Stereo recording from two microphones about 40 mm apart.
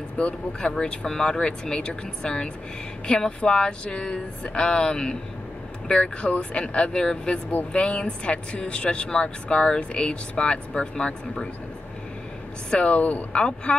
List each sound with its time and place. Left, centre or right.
0.2 s speech: left
12.7 s speech: left
13.3 s speech: left